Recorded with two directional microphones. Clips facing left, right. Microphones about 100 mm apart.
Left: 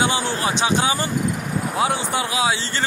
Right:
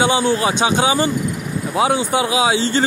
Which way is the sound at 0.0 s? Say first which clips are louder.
Right 5 dB; 15° right (ahead or behind).